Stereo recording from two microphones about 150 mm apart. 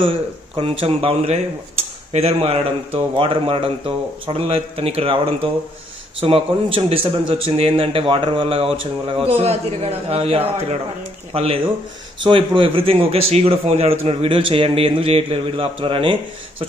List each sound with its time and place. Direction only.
0.6 s speech: 40° right (ahead or behind)